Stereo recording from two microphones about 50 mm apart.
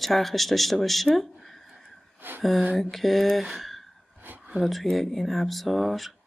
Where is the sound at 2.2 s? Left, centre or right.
Right.